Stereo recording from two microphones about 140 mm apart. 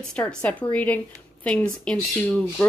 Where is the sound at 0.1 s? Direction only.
5° left (ahead or behind).